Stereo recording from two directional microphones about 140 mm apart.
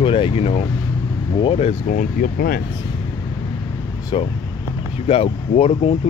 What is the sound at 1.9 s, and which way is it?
Speech, 70° left (ahead or behind).